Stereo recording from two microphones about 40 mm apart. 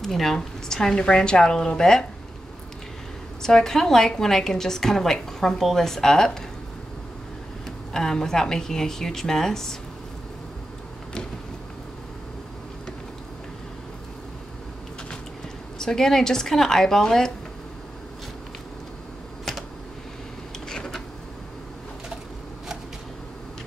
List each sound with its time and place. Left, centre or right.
0.0 s a woman's voice: centre
3.4 s a woman's voice: centre
7.9 s a woman's voice: centre
15.8 s a woman's voice: centre
20.6 s a sound: centre